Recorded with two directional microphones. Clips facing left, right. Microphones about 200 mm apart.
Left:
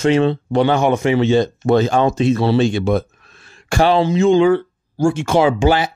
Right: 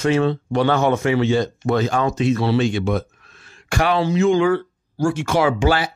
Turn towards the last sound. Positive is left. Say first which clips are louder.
# left 3 dB
turn(degrees=20)  # may be behind; listen again after turning